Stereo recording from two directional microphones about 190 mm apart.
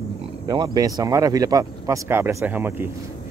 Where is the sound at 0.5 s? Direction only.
20° right (ahead or behind).